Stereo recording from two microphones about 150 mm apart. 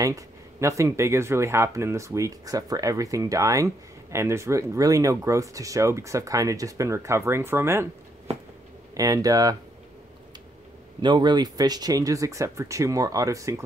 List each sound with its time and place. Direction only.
0.0 s speech: 20° right (ahead or behind)
8.9 s speech: 25° right (ahead or behind)
11.0 s speech: 30° right (ahead or behind)